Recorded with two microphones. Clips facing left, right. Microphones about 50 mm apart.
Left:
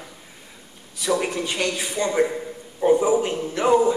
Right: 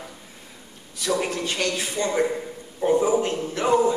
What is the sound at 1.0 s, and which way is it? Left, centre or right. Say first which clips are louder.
A woman's voice: left 2 dB; centre.